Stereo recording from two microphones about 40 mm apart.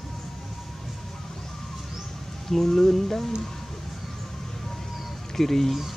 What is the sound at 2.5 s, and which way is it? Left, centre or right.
Music, centre.